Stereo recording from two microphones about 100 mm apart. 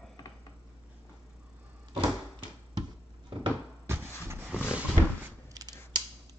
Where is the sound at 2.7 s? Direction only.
50° right (ahead or behind).